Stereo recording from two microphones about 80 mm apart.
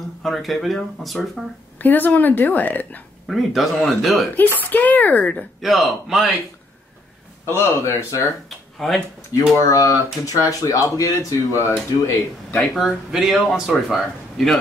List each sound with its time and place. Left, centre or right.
0.2 s speech: centre
1.8 s a woman's voice: left
3.3 s speech: centre
4.4 s a woman's voice: left
5.6 s speech: centre
7.4 s a man's voice: left
8.7 s speech: centre
9.7 s a man's voice: left
12.4 s speech: centre